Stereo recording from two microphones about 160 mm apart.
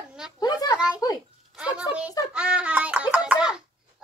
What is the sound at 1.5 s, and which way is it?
Speech, 5° right (ahead or behind).